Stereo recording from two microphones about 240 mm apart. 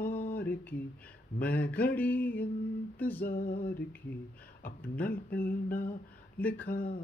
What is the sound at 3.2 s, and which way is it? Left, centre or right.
Mantra, left.